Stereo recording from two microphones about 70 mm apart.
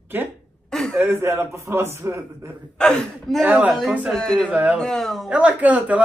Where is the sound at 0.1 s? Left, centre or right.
Right.